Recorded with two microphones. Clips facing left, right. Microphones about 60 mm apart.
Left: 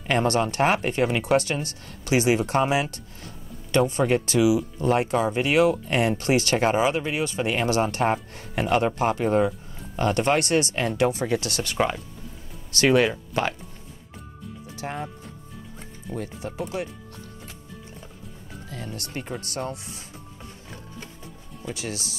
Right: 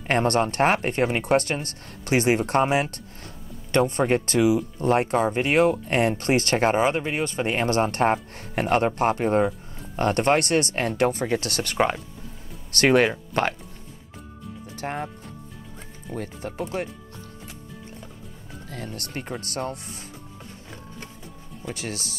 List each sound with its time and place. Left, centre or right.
0.0 s speech: right
14.8 s speech: right
16.2 s speech: right
18.9 s speech: right
21.7 s speech: right